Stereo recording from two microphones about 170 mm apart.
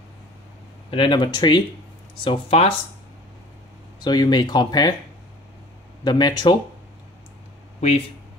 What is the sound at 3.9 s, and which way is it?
Speech, 25° left (ahead or behind).